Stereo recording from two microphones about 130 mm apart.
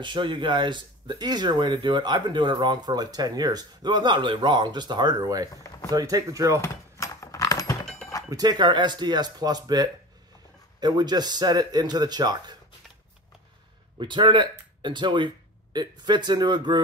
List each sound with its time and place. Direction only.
0.0 s speech: 40° right (ahead or behind)
6.6 s typing: 25° left (ahead or behind)
8.3 s speech: 30° right (ahead or behind)
13.9 s speech: 40° right (ahead or behind)